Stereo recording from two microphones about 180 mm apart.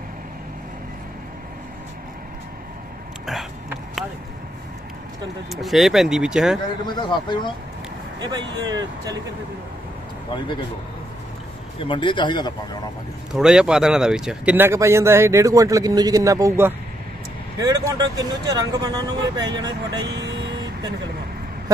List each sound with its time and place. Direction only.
5.5 s speech: centre (ahead or behind)
6.9 s speech: 25° left (ahead or behind)
8.2 s speech: 25° right (ahead or behind)
11.8 s speech: 25° left (ahead or behind)
13.3 s speech: 5° right (ahead or behind); by 19.7 s 20° right (ahead or behind)
20.1 s vehicle: 70° right (ahead or behind)